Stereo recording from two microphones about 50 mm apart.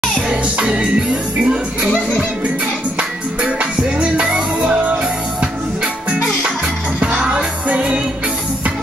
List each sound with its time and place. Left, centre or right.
0.3 s music: centre
3.0 s music: right
7.0 s music: right